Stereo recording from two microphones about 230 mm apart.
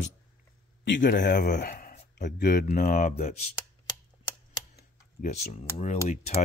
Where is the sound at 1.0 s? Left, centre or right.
Left.